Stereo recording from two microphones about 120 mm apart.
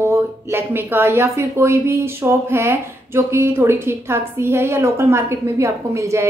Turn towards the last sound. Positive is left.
turn(degrees=-25)  # may be behind; listen again after turning